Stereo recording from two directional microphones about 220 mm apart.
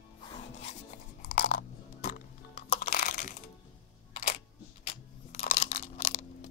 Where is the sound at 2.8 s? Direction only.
40° left (ahead or behind).